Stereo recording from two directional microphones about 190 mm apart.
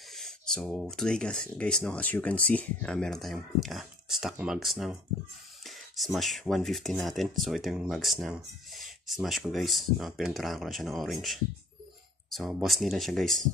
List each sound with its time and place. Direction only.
0.1 s speech: centre (ahead or behind)